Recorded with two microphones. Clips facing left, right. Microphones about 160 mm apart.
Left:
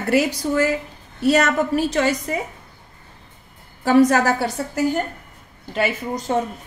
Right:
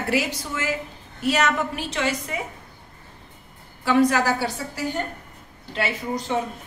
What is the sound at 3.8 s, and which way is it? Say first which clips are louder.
Speech: left 4 dB; 40° left (ahead or behind).